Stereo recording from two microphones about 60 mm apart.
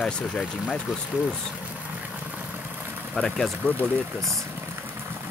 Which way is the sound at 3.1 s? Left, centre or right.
Centre.